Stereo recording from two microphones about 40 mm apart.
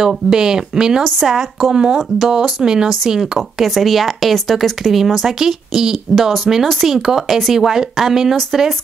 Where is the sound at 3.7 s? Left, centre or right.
Centre.